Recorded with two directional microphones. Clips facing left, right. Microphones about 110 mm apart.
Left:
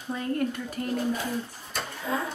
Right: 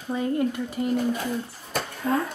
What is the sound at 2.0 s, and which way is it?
Speech, 55° right (ahead or behind).